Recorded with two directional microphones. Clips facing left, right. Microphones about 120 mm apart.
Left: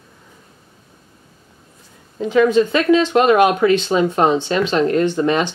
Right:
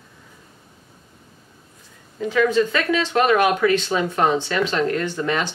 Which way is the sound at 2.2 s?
20° left (ahead or behind).